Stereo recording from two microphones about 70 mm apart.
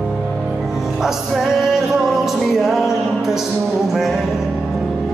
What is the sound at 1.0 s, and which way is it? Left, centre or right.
Music, centre.